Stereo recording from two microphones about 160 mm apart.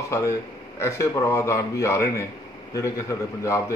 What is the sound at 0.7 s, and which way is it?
A man's voice, 15° left (ahead or behind).